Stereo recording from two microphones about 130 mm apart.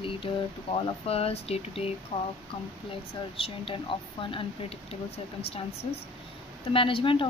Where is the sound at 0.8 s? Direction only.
50° left (ahead or behind).